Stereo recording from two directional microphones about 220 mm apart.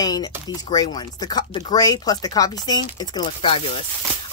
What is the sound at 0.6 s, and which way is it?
Speech, 20° left (ahead or behind).